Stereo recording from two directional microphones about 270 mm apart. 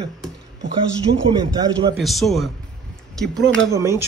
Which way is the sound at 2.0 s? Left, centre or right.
Centre.